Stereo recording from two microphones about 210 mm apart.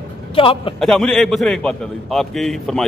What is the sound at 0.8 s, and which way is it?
A man's voice, centre (ahead or behind).